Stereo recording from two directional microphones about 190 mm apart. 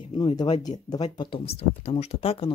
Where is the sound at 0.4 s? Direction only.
20° left (ahead or behind).